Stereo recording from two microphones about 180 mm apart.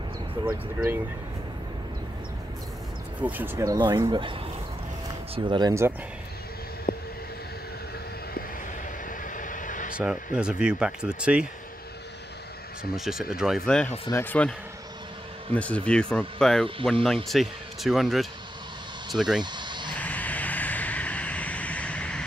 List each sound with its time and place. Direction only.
3.2 s speech: 10° right (ahead or behind)
6.9 s vehicle: 55° left (ahead or behind)
9.4 s a sound: 45° left (ahead or behind)
9.9 s speech: 5° right (ahead or behind)
12.9 s speech: centre (ahead or behind)
15.5 s speech: 5° left (ahead or behind)
19.4 s a sound: 25° right (ahead or behind)
20.0 s vehicle: 10° left (ahead or behind)